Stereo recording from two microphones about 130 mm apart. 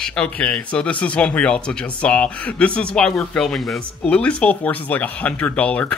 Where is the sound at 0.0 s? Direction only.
5° left (ahead or behind).